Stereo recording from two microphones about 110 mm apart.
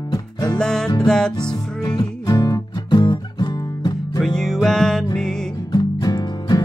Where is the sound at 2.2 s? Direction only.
35° left (ahead or behind).